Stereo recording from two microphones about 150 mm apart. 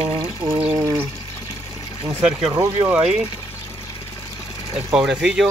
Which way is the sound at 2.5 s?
15° right (ahead or behind).